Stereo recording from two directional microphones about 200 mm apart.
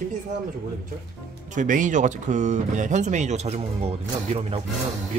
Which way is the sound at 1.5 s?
40° right (ahead or behind).